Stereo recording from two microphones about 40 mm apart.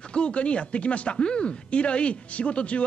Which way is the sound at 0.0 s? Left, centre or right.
Left.